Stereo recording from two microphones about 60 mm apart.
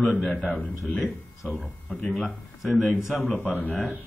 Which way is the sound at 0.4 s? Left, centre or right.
Left.